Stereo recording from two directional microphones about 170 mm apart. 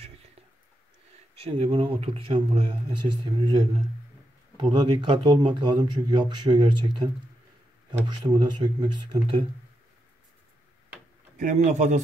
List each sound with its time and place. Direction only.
1.4 s speech: 35° right (ahead or behind)
8.1 s speech: 25° right (ahead or behind)
11.3 s a man's voice: 45° right (ahead or behind)